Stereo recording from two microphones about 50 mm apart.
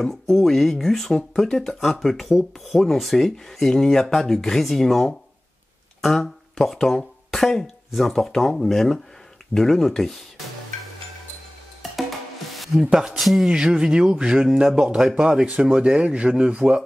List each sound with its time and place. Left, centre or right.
0.0 s speech: centre
11.8 s music: centre
12.9 s speech: centre
13.2 s speech: centre
13.5 s speech: centre